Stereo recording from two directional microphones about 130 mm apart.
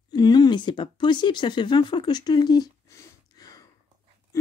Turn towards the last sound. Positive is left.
turn(degrees=30)  # may be behind; listen again after turning